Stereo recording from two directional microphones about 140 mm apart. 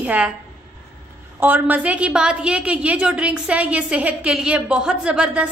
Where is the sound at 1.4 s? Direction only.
15° right (ahead or behind).